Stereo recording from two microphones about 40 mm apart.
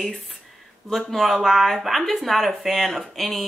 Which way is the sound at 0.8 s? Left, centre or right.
Centre.